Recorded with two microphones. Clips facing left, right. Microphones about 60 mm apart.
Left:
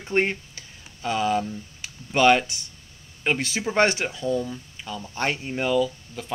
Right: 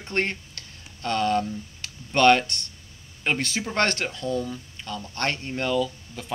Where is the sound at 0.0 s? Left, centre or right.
Centre.